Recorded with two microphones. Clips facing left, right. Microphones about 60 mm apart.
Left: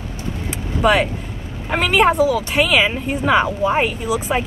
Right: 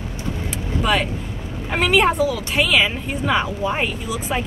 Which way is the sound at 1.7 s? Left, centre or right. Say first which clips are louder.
Left 2 dB; centre.